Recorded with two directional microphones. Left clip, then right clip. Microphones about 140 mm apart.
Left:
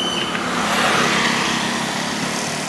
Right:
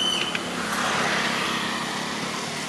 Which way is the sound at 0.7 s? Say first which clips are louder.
Left 6 dB; 20° left (ahead or behind).